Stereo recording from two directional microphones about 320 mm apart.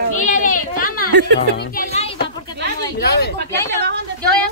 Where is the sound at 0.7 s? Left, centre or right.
Left.